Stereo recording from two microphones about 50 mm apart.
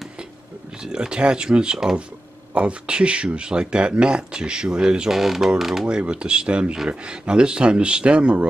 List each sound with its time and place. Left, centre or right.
0.8 s speech: centre
5.9 s speech: centre